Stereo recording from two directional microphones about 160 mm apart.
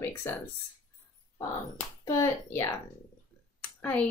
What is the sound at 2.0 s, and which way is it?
Speech, 20° left (ahead or behind).